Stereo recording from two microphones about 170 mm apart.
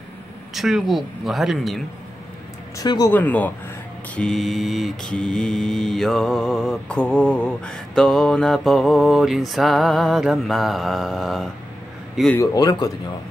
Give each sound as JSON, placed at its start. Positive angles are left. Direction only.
{"t": 0.6, "sound": "mantra", "side_deg": 0}
{"t": 2.8, "sound": "a man's voice", "side_deg": 20}
{"t": 3.1, "sound": "speech", "side_deg": 10}
{"t": 4.1, "sound": "mantra", "side_deg": 5}
{"t": 12.4, "sound": "a man's voice", "side_deg": 20}